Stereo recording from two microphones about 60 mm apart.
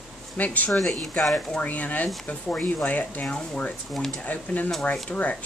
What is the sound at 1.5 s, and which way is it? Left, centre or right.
Speech, left.